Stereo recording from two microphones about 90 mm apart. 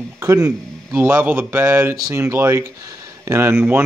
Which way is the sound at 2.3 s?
25° right (ahead or behind).